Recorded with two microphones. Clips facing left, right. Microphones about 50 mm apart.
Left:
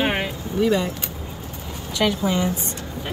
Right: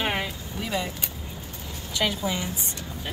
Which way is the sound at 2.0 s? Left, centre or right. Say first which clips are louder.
Left 5 dB; centre.